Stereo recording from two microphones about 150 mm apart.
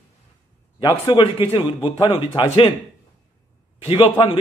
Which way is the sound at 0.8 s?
30° left (ahead or behind).